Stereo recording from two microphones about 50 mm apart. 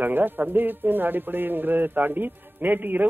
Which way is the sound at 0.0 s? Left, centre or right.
Right.